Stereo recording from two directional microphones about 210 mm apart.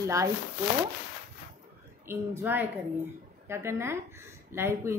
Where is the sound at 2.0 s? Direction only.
10° right (ahead or behind).